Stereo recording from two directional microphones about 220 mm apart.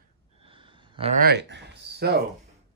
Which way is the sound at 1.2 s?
50° right (ahead or behind).